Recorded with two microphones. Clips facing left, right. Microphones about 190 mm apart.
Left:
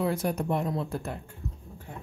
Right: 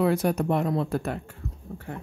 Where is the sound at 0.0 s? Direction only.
75° right (ahead or behind).